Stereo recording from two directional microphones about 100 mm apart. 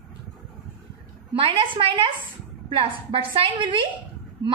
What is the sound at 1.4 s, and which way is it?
A woman's voice, 60° right (ahead or behind).